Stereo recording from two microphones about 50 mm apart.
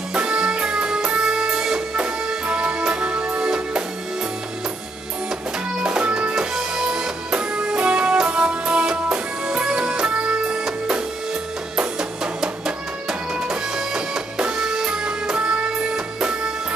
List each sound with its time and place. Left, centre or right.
0.1 s music: centre
5.8 s music: centre
7.3 s music: right
11.7 s music: centre